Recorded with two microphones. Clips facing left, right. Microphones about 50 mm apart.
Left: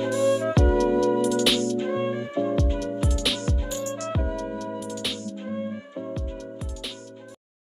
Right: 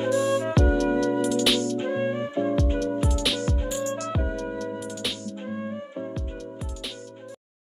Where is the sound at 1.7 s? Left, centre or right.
Right.